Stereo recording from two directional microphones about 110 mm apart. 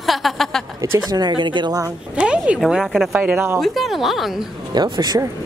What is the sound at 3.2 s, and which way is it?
Speech, 20° right (ahead or behind).